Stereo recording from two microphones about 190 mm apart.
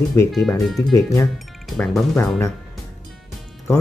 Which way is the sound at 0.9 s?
15° left (ahead or behind).